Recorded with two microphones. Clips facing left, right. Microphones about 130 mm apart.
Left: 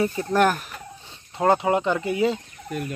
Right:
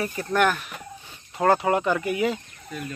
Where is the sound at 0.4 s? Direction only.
40° left (ahead or behind).